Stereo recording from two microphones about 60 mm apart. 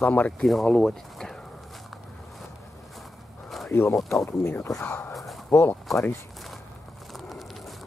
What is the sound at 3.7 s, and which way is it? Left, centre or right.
Speech, left.